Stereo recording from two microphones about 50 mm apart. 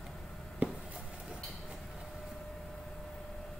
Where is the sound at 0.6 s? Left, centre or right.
Right.